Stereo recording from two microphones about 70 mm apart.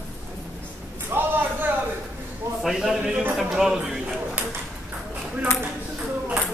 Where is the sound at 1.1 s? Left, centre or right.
Right.